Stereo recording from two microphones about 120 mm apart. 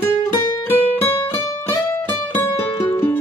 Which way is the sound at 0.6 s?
15° left (ahead or behind).